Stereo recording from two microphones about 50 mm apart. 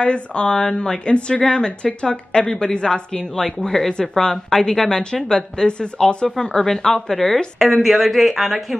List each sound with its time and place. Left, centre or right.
0.0 s a woman's voice: left
7.5 s a woman's voice: centre